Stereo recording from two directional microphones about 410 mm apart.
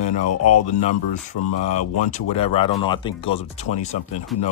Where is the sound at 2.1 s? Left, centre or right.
Centre.